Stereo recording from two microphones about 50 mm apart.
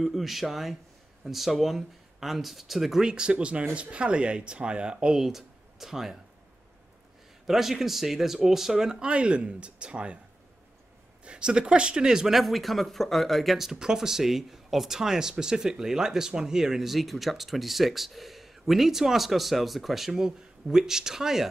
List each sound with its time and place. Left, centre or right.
0.0 s speech: centre
3.1 s speech: centre
5.2 s speech: centre
7.4 s speech: centre
9.0 s speech: right
11.2 s speech: centre